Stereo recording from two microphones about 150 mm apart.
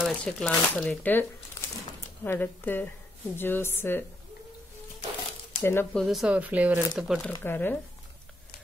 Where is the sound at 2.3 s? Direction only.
15° left (ahead or behind).